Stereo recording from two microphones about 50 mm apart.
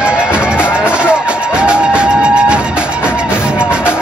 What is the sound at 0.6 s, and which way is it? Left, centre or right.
Music, left.